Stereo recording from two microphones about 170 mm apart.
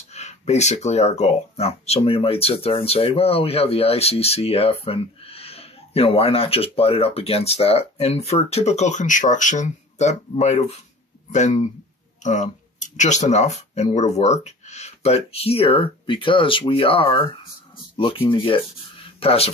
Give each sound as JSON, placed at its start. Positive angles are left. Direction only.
{"t": 0.1, "sound": "speech", "side_deg": 40}